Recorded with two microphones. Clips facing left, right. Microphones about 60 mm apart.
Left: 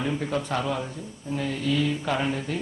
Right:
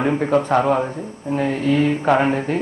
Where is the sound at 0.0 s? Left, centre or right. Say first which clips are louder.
Right 10 dB; right.